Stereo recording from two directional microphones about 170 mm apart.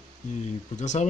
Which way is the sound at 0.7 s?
45° left (ahead or behind).